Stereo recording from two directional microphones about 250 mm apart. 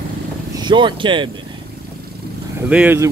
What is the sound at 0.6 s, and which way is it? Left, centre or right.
Speech, centre.